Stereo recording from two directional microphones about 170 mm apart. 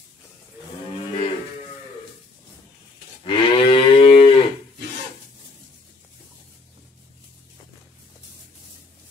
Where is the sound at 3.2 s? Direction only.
35° left (ahead or behind).